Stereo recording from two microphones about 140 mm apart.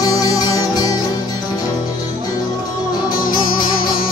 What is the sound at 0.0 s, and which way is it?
Music, 30° left (ahead or behind).